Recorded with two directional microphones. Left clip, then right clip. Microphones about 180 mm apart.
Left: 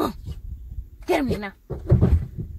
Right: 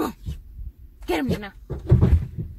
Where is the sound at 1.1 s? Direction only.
55° left (ahead or behind).